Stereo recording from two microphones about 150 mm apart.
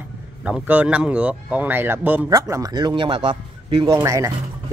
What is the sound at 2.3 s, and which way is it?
Speech, 25° right (ahead or behind).